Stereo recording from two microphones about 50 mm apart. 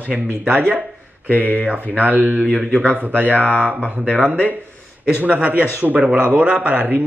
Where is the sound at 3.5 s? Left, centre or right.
Left.